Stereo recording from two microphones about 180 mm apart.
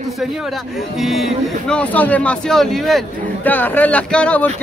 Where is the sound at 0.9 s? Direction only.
Centre (ahead or behind).